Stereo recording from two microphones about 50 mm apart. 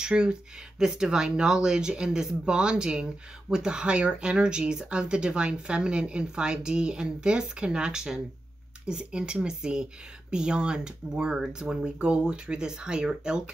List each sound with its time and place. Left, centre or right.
0.0 s speech: centre